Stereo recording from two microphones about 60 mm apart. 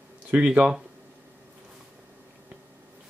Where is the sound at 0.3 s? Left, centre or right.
Right.